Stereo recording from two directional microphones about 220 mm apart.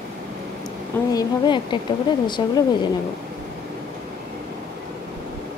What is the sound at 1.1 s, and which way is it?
A woman's voice, 20° left (ahead or behind).